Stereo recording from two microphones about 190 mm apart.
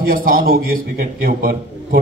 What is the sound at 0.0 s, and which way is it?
A man's voice, 50° right (ahead or behind).